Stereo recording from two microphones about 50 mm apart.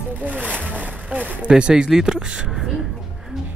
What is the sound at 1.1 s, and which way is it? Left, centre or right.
Speech, right.